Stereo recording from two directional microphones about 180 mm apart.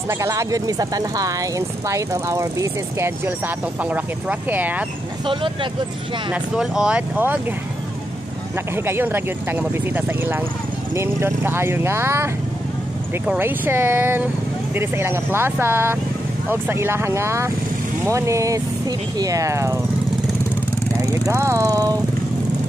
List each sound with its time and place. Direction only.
0.1 s speech: 15° right (ahead or behind)
5.2 s speech: 30° right (ahead or behind)
6.3 s speech: 5° right (ahead or behind)
8.7 s speech: 15° right (ahead or behind)
21.0 s speech: 15° right (ahead or behind)